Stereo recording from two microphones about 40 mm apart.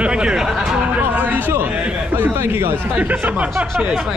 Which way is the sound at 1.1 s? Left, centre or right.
Right.